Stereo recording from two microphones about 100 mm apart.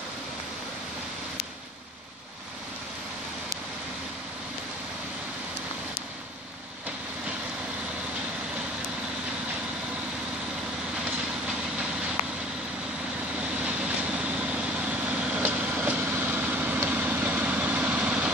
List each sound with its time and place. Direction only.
13.4 s vehicle: 10° right (ahead or behind)